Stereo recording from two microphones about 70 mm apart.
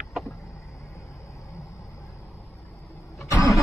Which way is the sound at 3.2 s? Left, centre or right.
Left.